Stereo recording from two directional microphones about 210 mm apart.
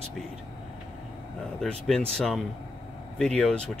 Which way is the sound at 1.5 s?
Centre (ahead or behind).